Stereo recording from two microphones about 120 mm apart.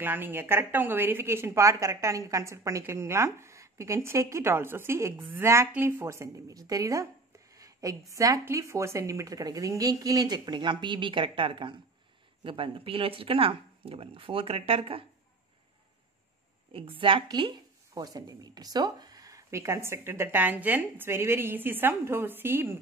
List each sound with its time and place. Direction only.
0.0 s a woman's voice: 15° right (ahead or behind); by 15.0 s 50° right (ahead or behind)
16.7 s speech: 50° right (ahead or behind); by 22.8 s 20° right (ahead or behind)